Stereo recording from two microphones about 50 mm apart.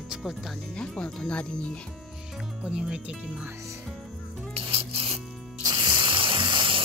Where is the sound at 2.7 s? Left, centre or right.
Centre.